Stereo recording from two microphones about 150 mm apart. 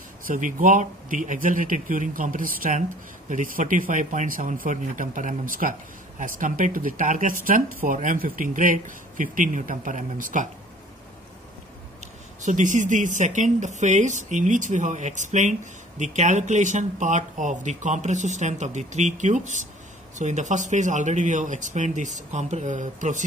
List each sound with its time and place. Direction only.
0.3 s speech: 60° right (ahead or behind)
12.4 s speech: 55° right (ahead or behind)